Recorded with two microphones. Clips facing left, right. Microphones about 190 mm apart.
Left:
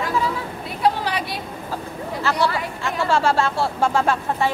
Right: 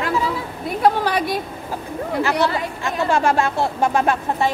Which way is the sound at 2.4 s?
20° right (ahead or behind).